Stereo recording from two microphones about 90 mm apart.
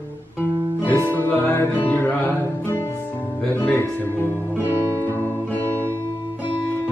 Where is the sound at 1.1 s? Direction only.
20° left (ahead or behind).